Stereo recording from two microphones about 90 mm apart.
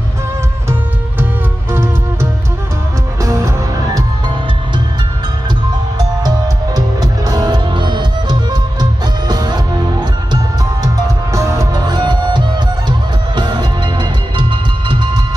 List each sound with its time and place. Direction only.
1.7 s music: 30° right (ahead or behind)
5.9 s music: 45° right (ahead or behind)
11.3 s music: 35° right (ahead or behind)
11.7 s music: 50° right (ahead or behind)